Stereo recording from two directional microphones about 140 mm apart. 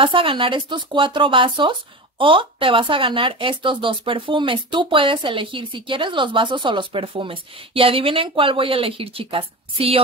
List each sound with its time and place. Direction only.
0.0 s speech: 40° right (ahead or behind)